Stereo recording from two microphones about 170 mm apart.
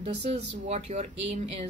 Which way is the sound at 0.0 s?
40° right (ahead or behind).